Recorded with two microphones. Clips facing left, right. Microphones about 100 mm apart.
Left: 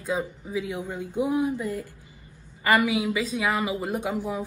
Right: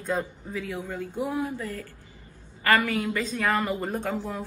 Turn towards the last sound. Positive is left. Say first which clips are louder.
# left 2 dB
turn(degrees=15)  # may be behind; listen again after turning